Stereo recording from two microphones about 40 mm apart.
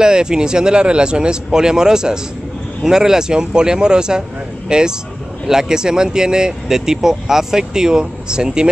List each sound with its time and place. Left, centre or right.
0.0 s speech: centre